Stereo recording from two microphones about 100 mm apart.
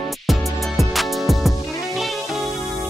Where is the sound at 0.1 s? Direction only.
Centre (ahead or behind).